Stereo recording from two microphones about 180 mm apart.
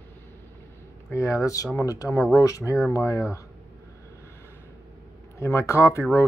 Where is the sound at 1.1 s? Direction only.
15° left (ahead or behind).